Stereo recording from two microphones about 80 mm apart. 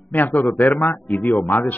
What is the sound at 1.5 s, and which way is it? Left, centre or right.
Speech, left.